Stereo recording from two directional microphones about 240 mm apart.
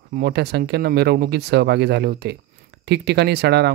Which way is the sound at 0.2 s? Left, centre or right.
Right.